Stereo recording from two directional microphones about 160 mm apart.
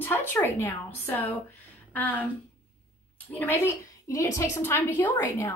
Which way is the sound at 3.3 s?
15° left (ahead or behind).